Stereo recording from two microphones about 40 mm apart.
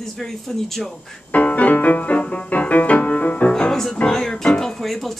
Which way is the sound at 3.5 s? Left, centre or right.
Centre.